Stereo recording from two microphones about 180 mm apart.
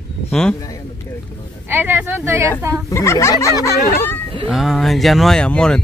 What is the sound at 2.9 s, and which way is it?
Speech, 15° left (ahead or behind).